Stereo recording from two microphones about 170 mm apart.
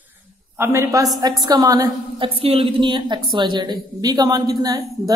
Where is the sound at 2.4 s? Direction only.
35° right (ahead or behind).